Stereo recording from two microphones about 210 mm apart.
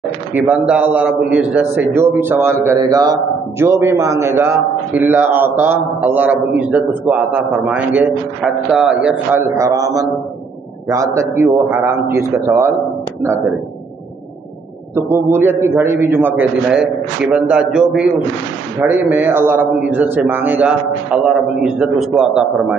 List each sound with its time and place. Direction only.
0.3 s a man's voice: 10° right (ahead or behind)
9.6 s a man's voice: 15° right (ahead or behind)
15.0 s a man's voice: 10° right (ahead or behind)